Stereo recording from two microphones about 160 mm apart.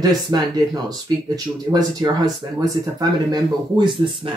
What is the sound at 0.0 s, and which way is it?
Speech, 25° right (ahead or behind).